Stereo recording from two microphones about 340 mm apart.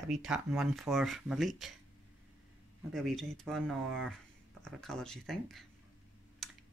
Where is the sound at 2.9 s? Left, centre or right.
Centre.